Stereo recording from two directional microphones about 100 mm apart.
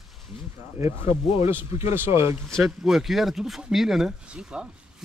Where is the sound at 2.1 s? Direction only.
90° left.